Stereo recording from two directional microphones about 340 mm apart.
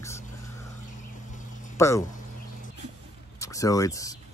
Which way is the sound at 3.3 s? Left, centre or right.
Centre.